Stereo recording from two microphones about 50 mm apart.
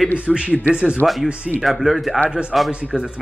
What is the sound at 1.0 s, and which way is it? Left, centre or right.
Speech, centre.